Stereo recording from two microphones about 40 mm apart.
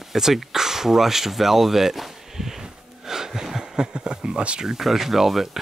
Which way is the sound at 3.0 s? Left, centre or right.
Centre.